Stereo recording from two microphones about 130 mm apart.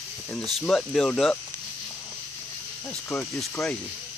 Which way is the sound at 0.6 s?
5° left (ahead or behind).